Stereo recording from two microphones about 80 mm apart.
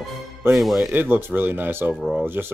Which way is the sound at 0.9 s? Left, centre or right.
Right.